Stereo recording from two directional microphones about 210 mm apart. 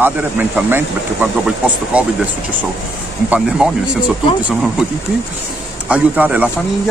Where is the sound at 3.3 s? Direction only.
5° right (ahead or behind).